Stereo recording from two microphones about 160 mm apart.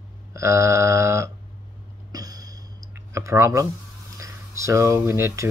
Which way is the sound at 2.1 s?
25° right (ahead or behind).